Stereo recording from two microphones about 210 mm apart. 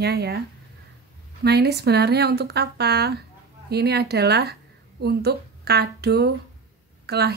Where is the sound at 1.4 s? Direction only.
50° right (ahead or behind).